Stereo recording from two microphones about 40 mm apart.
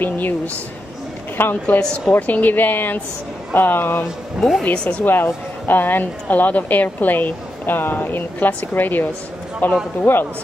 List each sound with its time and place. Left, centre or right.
1.4 s speech: left
1.8 s a woman's voice: left
2.1 s a woman's voice: left
4.4 s speech: centre
5.0 s a woman's voice: left